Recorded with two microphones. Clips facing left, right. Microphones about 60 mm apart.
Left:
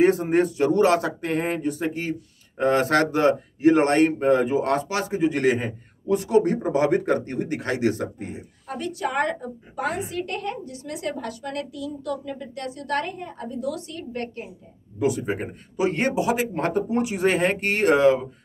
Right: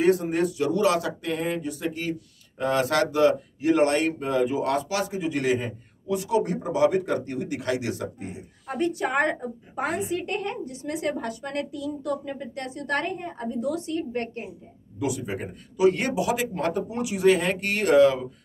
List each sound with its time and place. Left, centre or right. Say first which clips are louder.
0.0 s speech: left 3 dB; left
8.6 s a woman's voice: right 2 dB; right
15.0 s speech: left 5 dB; left